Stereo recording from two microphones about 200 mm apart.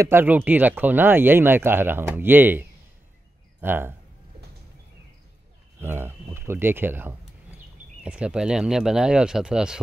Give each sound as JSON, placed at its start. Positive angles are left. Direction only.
{"t": 0.0, "sound": "speech", "side_deg": -10}
{"t": 3.6, "sound": "speech", "side_deg": -10}
{"t": 5.8, "sound": "speech", "side_deg": -10}